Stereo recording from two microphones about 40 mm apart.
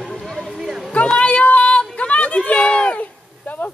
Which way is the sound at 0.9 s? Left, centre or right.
Left.